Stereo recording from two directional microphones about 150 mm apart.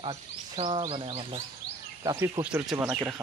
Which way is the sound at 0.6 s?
35° right (ahead or behind).